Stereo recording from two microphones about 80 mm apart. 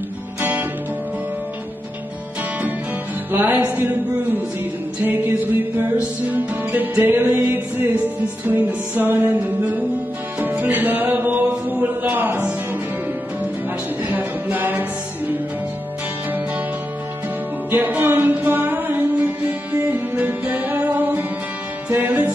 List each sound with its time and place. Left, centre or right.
0.4 s guitar: right
3.3 s music: right
5.0 s music: right
14.1 s music: right
17.6 s music: right